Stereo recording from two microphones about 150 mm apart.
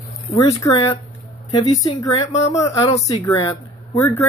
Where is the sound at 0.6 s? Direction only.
25° left (ahead or behind).